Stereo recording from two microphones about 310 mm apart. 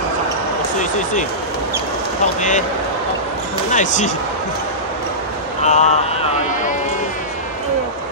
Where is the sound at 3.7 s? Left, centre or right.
Left.